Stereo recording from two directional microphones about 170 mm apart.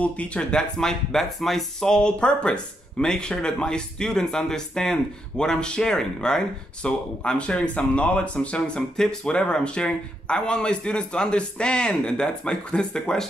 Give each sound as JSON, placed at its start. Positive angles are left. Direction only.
{"t": 0.0, "sound": "speech", "side_deg": 5}